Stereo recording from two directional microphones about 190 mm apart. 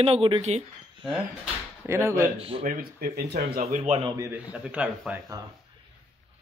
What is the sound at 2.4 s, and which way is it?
Speech, 30° right (ahead or behind).